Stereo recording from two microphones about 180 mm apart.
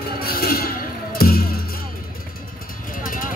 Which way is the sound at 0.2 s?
55° left (ahead or behind).